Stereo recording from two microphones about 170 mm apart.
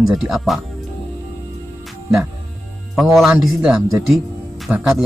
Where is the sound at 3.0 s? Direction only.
Centre (ahead or behind).